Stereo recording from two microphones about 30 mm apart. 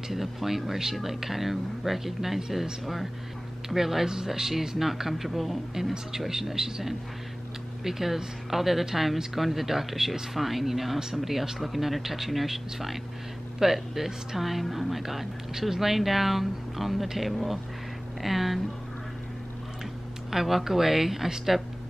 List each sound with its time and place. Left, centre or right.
0.1 s speech: centre
3.6 s speech: centre
6.1 s speech: centre
18.2 s speech: centre
20.2 s speech: centre